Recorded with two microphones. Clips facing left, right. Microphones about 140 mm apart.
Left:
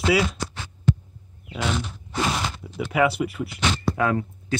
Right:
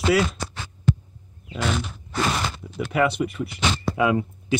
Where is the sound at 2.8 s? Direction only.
5° left (ahead or behind).